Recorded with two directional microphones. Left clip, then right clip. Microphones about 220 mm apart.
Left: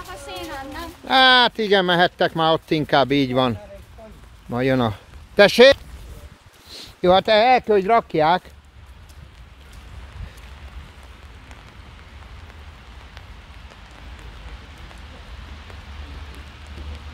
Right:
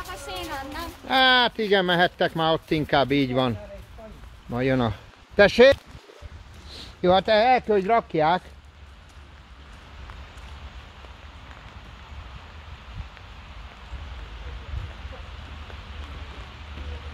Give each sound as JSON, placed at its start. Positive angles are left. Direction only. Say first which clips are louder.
{"t": 0.0, "sound": "a sound", "louder": "left 1 dB", "side_deg": -30}
{"t": 1.0, "sound": "speech", "louder": "left 5 dB", "side_deg": 30}
{"t": 6.7, "sound": "speech", "louder": "left 4 dB", "side_deg": 35}